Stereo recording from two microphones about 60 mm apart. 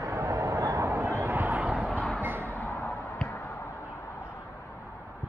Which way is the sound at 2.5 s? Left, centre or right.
Left.